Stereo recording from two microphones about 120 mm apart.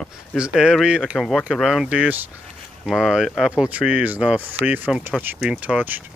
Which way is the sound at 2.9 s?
5° right (ahead or behind).